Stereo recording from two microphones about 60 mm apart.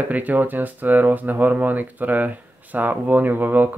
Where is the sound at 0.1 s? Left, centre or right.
Right.